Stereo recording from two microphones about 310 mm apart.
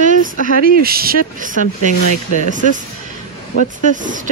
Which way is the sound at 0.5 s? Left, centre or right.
Right.